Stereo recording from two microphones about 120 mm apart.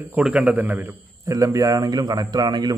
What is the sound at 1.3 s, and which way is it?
A man's voice, 30° right (ahead or behind).